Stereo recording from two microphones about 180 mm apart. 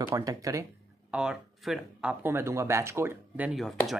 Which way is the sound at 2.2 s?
15° right (ahead or behind).